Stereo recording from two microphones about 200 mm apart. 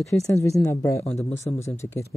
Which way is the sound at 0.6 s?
15° left (ahead or behind).